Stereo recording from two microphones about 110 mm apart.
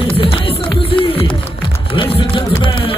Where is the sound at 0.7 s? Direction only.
55° left (ahead or behind).